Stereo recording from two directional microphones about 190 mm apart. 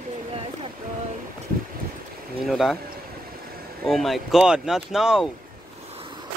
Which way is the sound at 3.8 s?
Centre (ahead or behind).